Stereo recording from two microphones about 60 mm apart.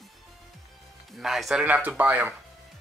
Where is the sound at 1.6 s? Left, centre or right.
Right.